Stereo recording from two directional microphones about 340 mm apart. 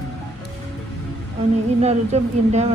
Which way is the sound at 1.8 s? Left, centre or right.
Centre.